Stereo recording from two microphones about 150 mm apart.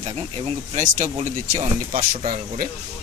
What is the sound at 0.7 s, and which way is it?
Speech, 55° right (ahead or behind).